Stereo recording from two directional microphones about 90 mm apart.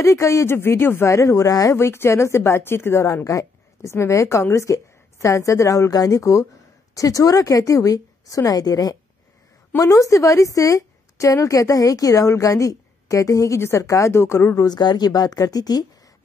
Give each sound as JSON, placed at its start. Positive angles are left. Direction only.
{"t": 0.0, "sound": "speech", "side_deg": 35}
{"t": 14.7, "sound": "speech", "side_deg": 50}